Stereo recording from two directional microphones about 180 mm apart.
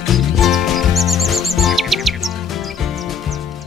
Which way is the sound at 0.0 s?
Centre (ahead or behind).